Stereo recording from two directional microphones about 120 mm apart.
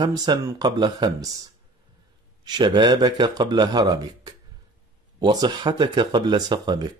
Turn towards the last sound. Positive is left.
turn(degrees=-35)  # may be behind; listen again after turning